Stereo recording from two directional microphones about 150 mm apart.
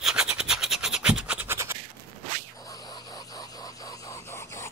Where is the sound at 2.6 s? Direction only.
25° left (ahead or behind).